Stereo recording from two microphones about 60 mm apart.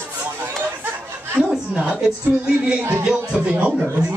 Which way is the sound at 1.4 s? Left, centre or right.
Centre.